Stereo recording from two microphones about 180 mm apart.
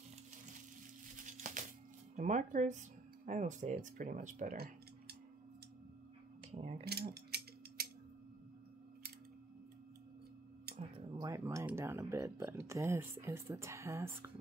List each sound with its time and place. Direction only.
1.1 s a sound: 45° right (ahead or behind)
2.1 s speech: 40° right (ahead or behind)
6.5 s speech: 40° right (ahead or behind)
6.8 s mechanisms: 65° right (ahead or behind)
11.1 s speech: 20° right (ahead or behind)